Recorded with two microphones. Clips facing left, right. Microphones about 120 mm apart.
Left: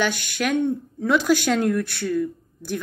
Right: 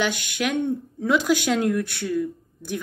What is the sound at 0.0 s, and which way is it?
A woman's voice, 15° right (ahead or behind).